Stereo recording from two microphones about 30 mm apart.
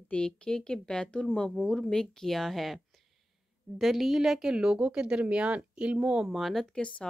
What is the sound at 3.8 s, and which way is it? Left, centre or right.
Speech, centre.